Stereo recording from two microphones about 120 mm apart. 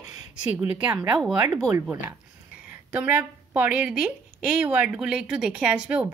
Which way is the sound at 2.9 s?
15° right (ahead or behind).